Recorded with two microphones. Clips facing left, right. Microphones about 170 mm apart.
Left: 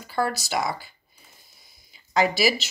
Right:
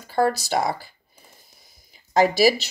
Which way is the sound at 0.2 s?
35° right (ahead or behind).